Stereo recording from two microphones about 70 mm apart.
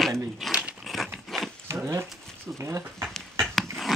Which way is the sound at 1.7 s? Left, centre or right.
Right.